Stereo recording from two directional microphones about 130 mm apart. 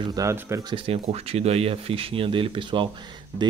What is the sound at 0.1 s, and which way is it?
Speech, 25° right (ahead or behind).